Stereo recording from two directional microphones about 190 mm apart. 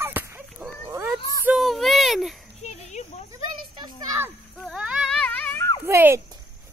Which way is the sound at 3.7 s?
25° right (ahead or behind).